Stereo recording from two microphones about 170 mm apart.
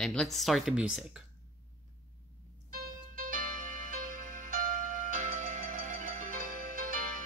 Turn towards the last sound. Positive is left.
turn(degrees=-55)  # may be behind; listen again after turning